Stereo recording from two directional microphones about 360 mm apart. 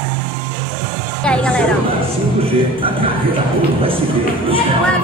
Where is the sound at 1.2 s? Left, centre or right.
Centre.